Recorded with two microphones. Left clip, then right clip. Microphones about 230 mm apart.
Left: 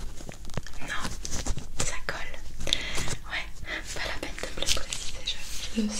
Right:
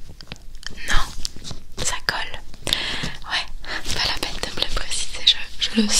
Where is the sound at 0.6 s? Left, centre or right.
Right.